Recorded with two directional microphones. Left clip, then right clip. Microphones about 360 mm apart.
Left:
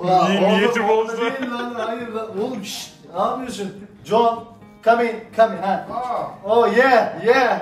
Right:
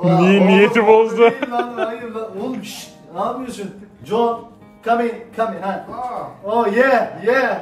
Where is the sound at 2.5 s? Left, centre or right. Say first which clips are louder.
Even; centre.